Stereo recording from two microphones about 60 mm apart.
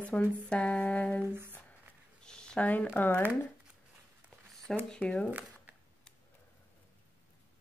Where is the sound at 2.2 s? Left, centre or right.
Centre.